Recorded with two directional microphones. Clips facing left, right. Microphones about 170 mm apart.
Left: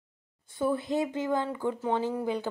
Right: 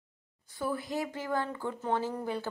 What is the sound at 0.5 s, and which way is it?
Speech, 25° left (ahead or behind).